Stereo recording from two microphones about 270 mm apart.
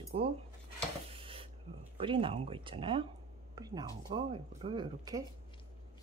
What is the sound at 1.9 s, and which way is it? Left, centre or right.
Speech, centre.